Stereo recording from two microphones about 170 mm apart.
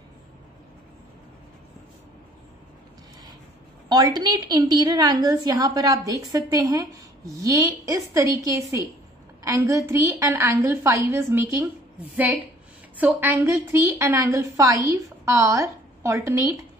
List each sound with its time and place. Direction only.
3.9 s a woman's voice: 25° right (ahead or behind)
9.4 s a woman's voice: 20° right (ahead or behind)
12.9 s a woman's voice: 10° right (ahead or behind)